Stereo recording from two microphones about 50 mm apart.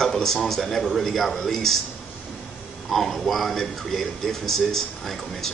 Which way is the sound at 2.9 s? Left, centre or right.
Centre.